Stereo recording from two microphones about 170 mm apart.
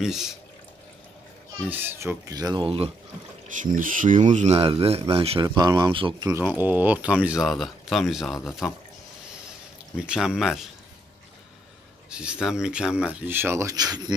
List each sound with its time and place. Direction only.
0.0 s speech: centre (ahead or behind)
1.7 s speech: 10° right (ahead or behind); by 2.9 s 30° right (ahead or behind)
3.4 s speech: 50° right (ahead or behind); by 6.4 s 20° right (ahead or behind)
6.4 s speech: 10° right (ahead or behind)
9.9 s speech: 5° right (ahead or behind)
12.1 s speech: 5° right (ahead or behind); by 14.1 s 25° right (ahead or behind)